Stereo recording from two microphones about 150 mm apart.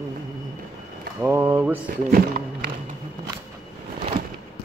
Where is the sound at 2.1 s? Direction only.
90° right.